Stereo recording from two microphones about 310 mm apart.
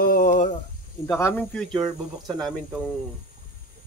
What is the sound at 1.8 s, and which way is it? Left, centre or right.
Speech, centre.